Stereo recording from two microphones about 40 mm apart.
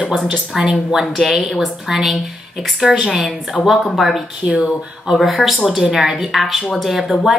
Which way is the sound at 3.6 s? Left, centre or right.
Left.